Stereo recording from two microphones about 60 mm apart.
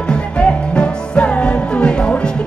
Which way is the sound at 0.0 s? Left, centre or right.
Centre.